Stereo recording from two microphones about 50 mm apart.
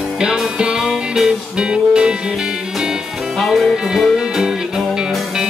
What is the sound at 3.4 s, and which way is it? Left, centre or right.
Music, centre.